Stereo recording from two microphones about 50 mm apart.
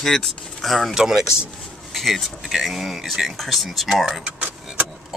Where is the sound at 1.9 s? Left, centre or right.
Centre.